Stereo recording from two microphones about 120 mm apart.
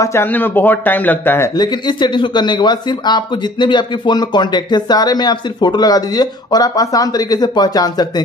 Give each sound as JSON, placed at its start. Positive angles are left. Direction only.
{"t": 0.0, "sound": "speech", "side_deg": 20}
{"t": 1.6, "sound": "a man's voice", "side_deg": 40}